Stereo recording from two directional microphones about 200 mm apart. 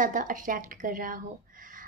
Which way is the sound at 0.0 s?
40° right (ahead or behind).